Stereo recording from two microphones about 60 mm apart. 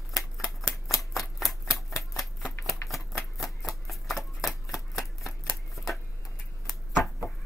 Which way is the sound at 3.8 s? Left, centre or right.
Centre.